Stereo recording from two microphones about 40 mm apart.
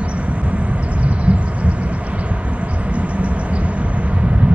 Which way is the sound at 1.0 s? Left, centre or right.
Right.